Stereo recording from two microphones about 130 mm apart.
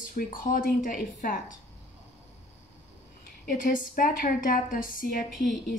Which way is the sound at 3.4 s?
90° left.